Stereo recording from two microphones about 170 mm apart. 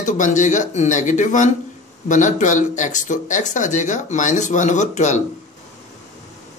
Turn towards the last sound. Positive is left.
turn(degrees=45)  # may be behind; listen again after turning